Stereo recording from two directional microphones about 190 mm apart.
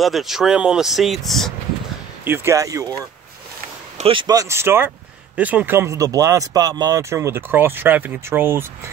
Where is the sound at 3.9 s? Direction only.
30° right (ahead or behind).